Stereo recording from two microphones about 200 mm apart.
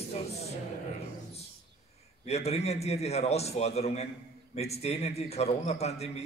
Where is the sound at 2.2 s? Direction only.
30° left (ahead or behind).